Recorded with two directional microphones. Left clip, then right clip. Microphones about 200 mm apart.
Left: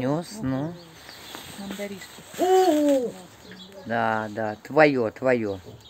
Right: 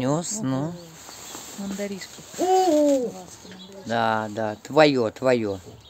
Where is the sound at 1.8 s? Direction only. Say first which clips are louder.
Right 3 dB; 45° right (ahead or behind).